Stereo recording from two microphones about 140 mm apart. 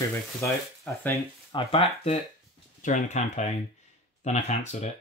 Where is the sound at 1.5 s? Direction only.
40° left (ahead or behind).